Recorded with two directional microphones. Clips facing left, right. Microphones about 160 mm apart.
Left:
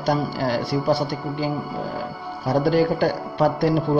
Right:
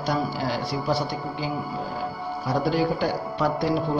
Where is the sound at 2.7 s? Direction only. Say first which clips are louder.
Left 4 dB; 55° left (ahead or behind).